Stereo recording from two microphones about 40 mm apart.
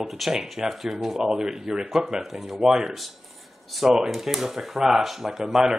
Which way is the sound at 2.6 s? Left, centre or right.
Centre.